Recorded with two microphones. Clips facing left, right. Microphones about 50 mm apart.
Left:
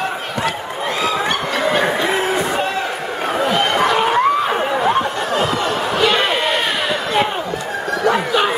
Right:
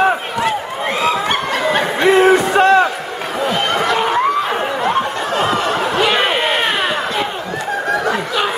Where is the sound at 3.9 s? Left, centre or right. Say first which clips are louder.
Even; centre.